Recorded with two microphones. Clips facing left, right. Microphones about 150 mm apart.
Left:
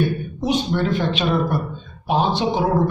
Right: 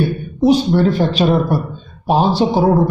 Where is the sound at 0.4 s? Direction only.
35° right (ahead or behind).